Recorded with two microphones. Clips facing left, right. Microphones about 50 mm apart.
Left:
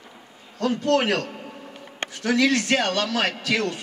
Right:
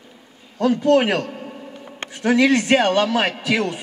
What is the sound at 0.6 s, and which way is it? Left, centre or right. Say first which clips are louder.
A man's voice: right 5 dB; centre.